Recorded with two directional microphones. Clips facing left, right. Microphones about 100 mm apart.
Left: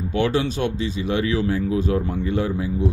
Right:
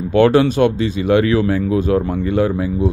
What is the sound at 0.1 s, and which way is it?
Speech, 65° right (ahead or behind).